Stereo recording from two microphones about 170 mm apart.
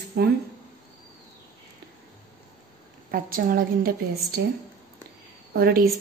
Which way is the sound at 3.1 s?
55° right (ahead or behind).